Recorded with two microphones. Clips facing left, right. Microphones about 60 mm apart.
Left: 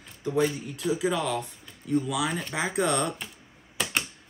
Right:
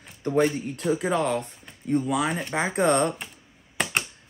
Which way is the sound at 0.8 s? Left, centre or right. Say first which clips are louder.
Right 2 dB; right.